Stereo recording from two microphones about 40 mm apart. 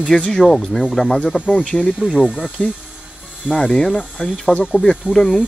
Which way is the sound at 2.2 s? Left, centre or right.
Right.